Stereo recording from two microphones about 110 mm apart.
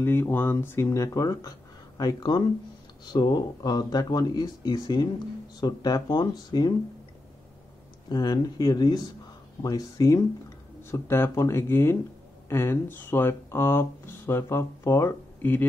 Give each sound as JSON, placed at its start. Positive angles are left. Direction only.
{"t": 0.0, "sound": "speech", "side_deg": 20}
{"t": 8.1, "sound": "speech", "side_deg": 40}